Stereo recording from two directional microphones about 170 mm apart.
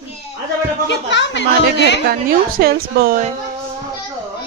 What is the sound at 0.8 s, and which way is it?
Speech, 90° left.